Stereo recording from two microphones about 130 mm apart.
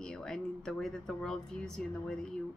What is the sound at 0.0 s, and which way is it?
A woman's voice, 5° left (ahead or behind).